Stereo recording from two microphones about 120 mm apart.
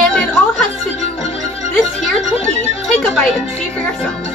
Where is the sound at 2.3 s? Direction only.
60° left (ahead or behind).